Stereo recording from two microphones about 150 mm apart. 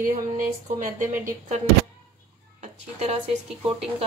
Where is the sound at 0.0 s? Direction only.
60° right (ahead or behind).